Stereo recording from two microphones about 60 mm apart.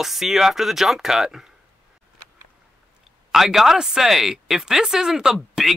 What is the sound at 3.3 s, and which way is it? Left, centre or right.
Speech, centre.